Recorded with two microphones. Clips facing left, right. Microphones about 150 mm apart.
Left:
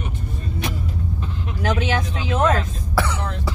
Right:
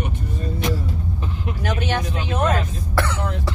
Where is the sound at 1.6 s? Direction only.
90° left.